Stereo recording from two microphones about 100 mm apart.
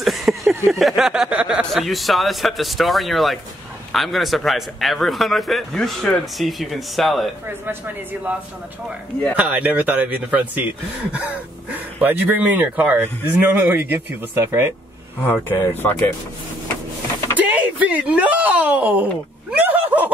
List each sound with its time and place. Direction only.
0.0 s speech: centre (ahead or behind)
1.7 s a man's voice: centre (ahead or behind)
7.4 s speech: 20° right (ahead or behind)
17.4 s speech: 15° right (ahead or behind)